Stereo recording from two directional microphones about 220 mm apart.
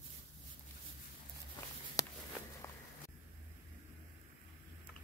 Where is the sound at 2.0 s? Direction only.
15° left (ahead or behind).